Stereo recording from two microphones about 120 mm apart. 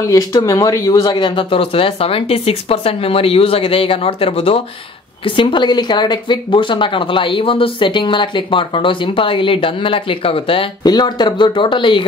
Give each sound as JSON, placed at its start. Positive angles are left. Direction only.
{"t": 0.1, "sound": "speech", "side_deg": 30}
{"t": 10.8, "sound": "speech", "side_deg": 35}